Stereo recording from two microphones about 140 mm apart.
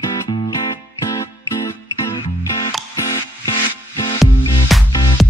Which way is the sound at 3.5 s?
35° left (ahead or behind).